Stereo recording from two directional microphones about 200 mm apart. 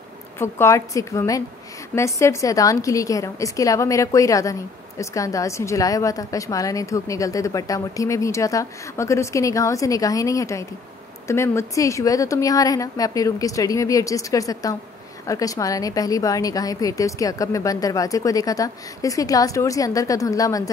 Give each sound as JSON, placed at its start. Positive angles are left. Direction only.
{"t": 0.4, "sound": "a woman's voice", "side_deg": 15}